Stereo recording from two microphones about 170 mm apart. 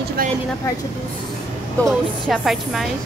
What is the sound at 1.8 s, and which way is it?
Speech, centre (ahead or behind).